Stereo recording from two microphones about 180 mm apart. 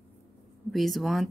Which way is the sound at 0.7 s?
Centre (ahead or behind).